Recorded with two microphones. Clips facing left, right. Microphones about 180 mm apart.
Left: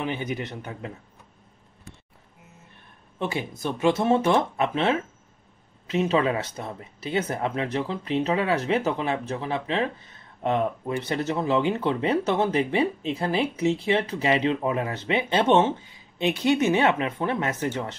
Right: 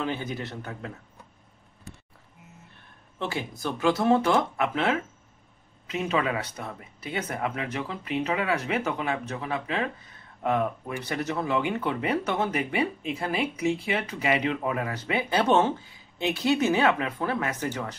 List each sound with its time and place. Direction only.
0.0 s a man's voice: 15° left (ahead or behind)
3.2 s speech: 20° left (ahead or behind)